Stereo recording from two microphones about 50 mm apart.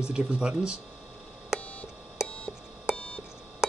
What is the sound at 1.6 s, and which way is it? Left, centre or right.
Beep, left.